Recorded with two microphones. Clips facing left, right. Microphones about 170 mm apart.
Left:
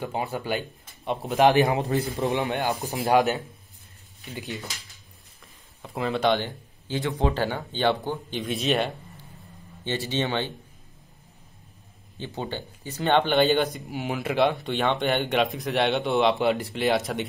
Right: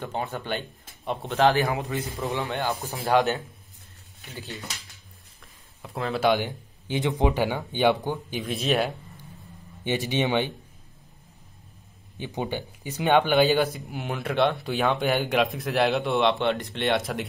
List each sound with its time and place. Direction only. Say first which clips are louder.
0.0 s speech: left 2 dB; 10° left (ahead or behind)
1.4 s a man's voice: left 2 dB; 20° left (ahead or behind)
1.8 s a man's voice: left 5 dB; 35° left (ahead or behind)
2.2 s speech: even; 15° left (ahead or behind)
5.8 s speech: left 1 dB; centre (ahead or behind)
8.4 s speech: even; centre (ahead or behind)
9.8 s speech: right 2 dB; 15° right (ahead or behind)
12.2 s speech: right 2 dB; 15° right (ahead or behind)